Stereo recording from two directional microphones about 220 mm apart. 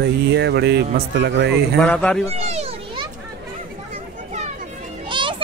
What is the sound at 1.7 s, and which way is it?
Speech, 5° left (ahead or behind).